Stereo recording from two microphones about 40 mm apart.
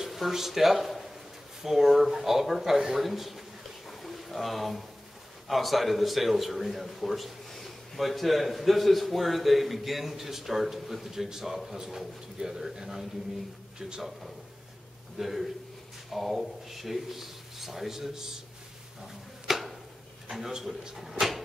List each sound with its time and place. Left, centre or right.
0.0 s speech: centre
3.0 s a sound: centre
5.5 s a man's voice: centre
15.1 s a man's voice: centre
18.9 s a sound: centre
20.5 s speech: centre